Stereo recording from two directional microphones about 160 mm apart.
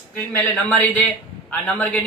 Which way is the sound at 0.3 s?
10° left (ahead or behind).